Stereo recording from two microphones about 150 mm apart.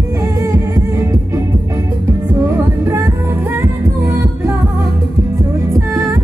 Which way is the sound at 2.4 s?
15° right (ahead or behind).